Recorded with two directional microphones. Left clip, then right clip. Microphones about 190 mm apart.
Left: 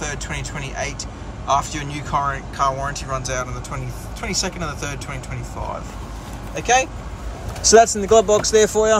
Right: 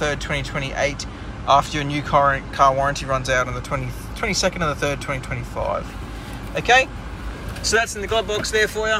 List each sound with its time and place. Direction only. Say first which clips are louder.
0.0 s speech: right 5 dB; 10° left (ahead or behind)
7.7 s speech: left 8 dB; 35° left (ahead or behind)